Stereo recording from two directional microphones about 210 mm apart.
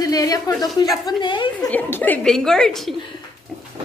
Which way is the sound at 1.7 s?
10° left (ahead or behind).